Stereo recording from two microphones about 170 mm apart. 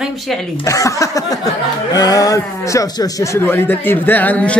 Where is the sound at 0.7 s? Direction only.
20° left (ahead or behind).